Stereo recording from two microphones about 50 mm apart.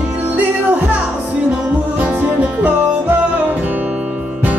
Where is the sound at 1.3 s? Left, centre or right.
Right.